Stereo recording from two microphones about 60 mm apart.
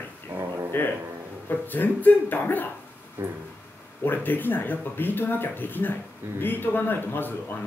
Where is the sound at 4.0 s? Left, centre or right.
Left.